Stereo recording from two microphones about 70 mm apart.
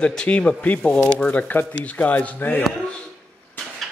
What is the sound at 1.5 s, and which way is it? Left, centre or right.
A woman's voice, left.